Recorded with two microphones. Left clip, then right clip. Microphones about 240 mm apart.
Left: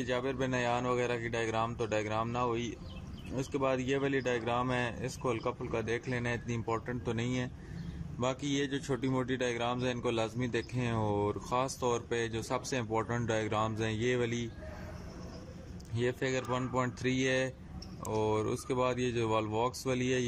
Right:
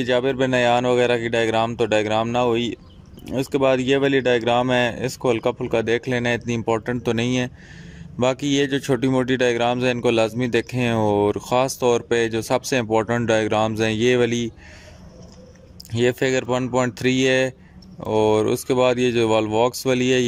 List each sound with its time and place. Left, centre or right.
0.0 s speech: right
15.9 s speech: right